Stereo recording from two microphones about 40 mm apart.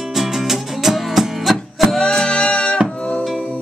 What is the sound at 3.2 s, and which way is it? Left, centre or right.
Music, centre.